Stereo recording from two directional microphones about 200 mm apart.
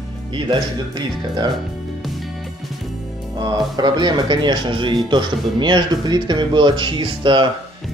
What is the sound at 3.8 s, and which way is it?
Speech, 20° right (ahead or behind).